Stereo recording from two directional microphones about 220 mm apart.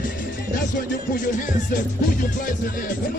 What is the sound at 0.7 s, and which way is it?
Music, 40° left (ahead or behind).